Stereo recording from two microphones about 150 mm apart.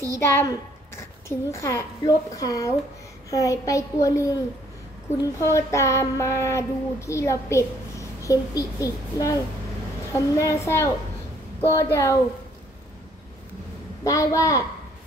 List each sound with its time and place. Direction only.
0.2 s a woman's voice: 15° left (ahead or behind)
3.3 s child singing: 20° left (ahead or behind)
14.0 s child singing: 20° left (ahead or behind)